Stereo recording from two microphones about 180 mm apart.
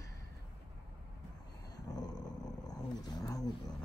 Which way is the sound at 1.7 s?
20° left (ahead or behind).